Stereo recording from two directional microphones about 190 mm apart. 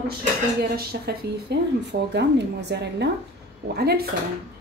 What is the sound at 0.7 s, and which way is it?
A woman's voice, 55° right (ahead or behind).